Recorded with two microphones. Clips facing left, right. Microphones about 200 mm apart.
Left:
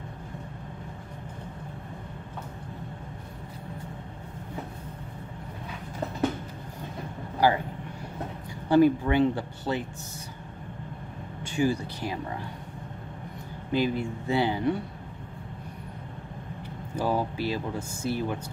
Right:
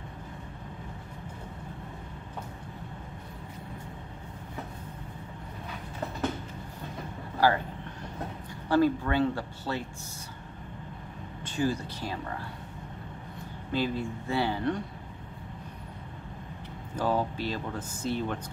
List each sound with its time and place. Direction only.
7.3 s speech: 15° left (ahead or behind)
8.6 s speech: 15° left (ahead or behind)
11.4 s speech: 15° left (ahead or behind)
13.7 s speech: 15° left (ahead or behind)
16.9 s speech: 10° left (ahead or behind)